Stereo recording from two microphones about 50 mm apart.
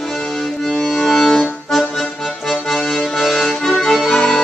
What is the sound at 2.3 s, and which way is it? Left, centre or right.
Accordion, centre.